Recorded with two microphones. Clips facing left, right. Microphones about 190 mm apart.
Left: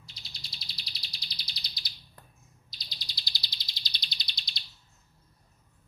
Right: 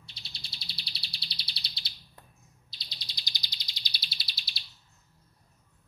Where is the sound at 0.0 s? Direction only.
30° right (ahead or behind).